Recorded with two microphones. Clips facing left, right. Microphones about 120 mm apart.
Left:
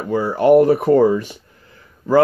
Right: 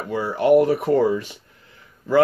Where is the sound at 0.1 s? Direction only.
40° left (ahead or behind).